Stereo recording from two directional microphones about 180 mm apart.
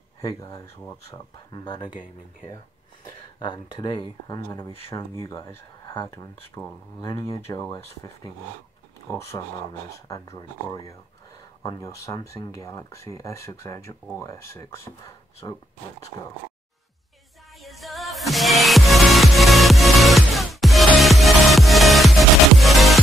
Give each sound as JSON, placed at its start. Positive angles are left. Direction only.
{"t": 0.2, "sound": "speech", "side_deg": 20}
{"t": 3.3, "sound": "speech", "side_deg": 25}
{"t": 4.5, "sound": "speech", "side_deg": 15}
{"t": 17.6, "sound": "music", "side_deg": 0}